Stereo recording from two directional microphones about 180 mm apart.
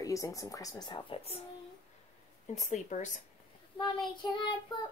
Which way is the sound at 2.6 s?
40° left (ahead or behind).